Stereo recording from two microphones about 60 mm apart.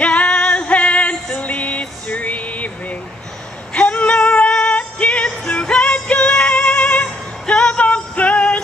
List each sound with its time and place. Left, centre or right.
0.0 s music: left
3.7 s female singing: left
5.5 s music: centre